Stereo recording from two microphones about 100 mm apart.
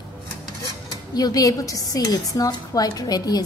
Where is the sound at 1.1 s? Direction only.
40° left (ahead or behind).